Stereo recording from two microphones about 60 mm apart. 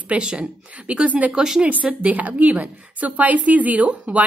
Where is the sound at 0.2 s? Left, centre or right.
Centre.